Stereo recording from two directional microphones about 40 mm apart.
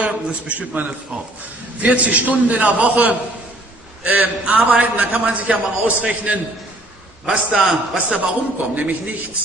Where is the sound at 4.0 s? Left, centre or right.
Right.